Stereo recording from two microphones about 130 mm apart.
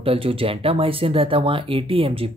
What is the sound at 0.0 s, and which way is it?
Speech, 45° right (ahead or behind).